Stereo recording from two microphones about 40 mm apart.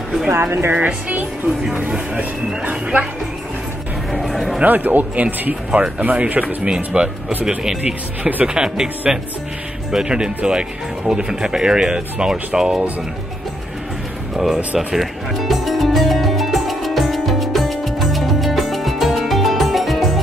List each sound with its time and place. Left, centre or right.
0.3 s speech: right
1.8 s speech: right
4.1 s music: centre
4.6 s speech: right
6.6 s speech: right
7.8 s speech: right
8.5 s speech: centre
14.3 s speech: centre
15.0 s music: centre